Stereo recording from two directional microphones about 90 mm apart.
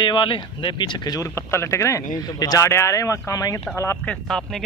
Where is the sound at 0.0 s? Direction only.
65° left (ahead or behind); by 1.2 s 50° left (ahead or behind).